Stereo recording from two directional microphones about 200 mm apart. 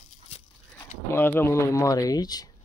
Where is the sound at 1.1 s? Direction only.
10° left (ahead or behind).